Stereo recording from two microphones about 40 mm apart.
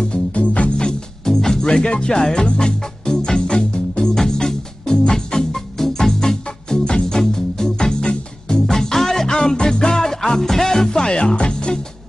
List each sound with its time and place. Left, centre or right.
0.1 s music: left
0.7 s music: centre
1.7 s music: left
8.6 s music: centre